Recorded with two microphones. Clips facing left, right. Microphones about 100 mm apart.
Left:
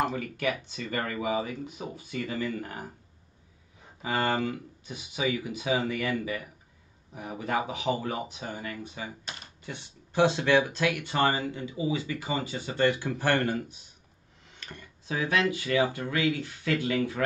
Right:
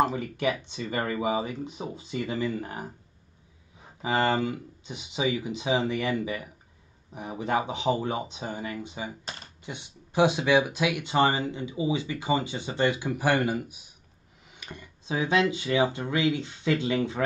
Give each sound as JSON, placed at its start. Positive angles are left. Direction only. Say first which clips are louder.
{"t": 0.1, "sound": "speech", "louder": "right 2 dB", "side_deg": -20}
{"t": 4.0, "sound": "speech", "louder": "right 3 dB", "side_deg": -20}